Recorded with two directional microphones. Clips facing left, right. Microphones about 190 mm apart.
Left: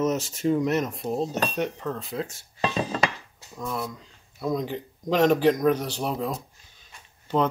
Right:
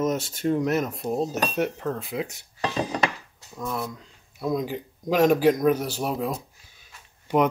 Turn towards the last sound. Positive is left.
turn(degrees=-15)  # may be behind; listen again after turning